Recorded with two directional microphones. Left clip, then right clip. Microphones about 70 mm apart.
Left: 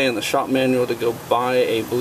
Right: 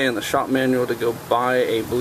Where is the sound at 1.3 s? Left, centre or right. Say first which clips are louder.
Left 1 dB; centre.